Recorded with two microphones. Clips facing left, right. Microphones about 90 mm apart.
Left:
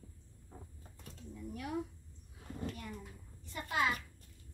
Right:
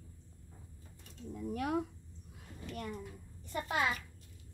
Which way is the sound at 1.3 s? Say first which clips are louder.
Right 6 dB; 75° right (ahead or behind).